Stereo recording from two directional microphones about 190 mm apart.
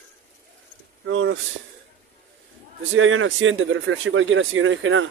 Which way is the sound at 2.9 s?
90° right.